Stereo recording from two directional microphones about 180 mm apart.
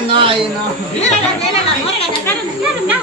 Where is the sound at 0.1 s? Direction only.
30° right (ahead or behind).